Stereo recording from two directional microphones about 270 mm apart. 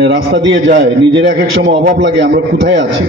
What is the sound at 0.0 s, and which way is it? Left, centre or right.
A man's voice, right.